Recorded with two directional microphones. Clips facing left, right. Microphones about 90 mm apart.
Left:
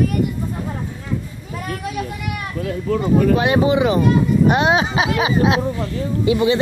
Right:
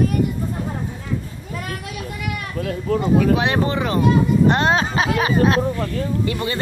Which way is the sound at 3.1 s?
Centre (ahead or behind).